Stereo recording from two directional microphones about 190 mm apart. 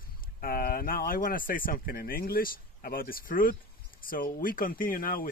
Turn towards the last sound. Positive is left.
turn(degrees=50)  # may be behind; listen again after turning